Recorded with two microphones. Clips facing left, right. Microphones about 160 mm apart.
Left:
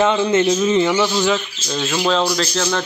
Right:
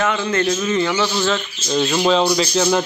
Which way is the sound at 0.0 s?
25° left (ahead or behind).